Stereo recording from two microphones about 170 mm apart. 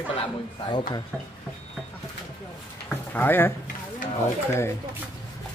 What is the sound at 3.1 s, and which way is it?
Speech, 10° left (ahead or behind).